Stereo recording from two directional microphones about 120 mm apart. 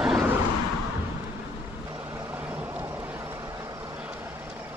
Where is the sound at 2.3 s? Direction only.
15° right (ahead or behind).